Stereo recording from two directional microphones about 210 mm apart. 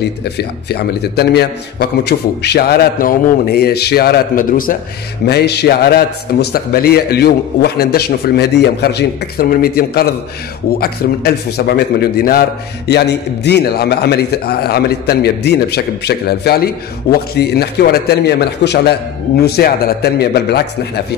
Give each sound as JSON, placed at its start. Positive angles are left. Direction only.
{"t": 0.2, "sound": "a man's voice", "side_deg": 50}
{"t": 5.2, "sound": "a man's voice", "side_deg": 50}